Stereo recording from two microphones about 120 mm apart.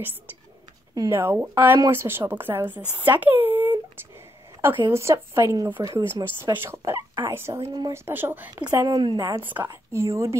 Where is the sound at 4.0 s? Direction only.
20° right (ahead or behind).